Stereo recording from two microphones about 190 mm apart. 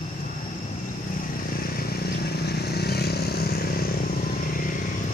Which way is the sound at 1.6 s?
50° left (ahead or behind).